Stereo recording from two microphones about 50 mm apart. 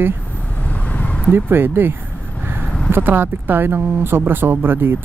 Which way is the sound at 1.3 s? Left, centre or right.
Right.